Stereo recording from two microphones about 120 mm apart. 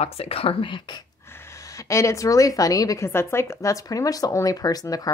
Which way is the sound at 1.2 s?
20° left (ahead or behind).